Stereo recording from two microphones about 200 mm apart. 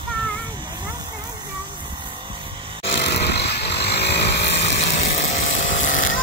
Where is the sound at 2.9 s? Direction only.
55° left (ahead or behind).